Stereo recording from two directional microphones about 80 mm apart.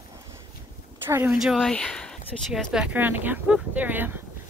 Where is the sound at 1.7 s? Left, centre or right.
Centre.